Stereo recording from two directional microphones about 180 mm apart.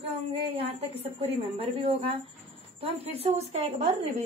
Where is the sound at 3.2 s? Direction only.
35° right (ahead or behind).